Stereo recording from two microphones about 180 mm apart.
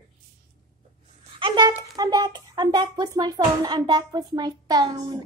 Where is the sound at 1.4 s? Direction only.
25° right (ahead or behind).